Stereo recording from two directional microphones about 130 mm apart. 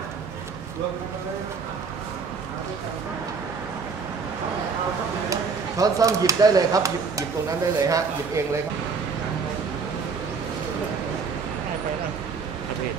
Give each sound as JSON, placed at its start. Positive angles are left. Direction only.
{"t": 5.3, "sound": "speech", "side_deg": -25}